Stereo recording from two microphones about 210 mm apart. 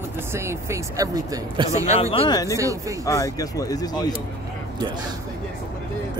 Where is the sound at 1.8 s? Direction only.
30° left (ahead or behind).